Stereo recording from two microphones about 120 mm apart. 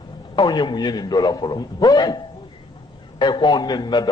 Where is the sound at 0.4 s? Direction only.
40° left (ahead or behind).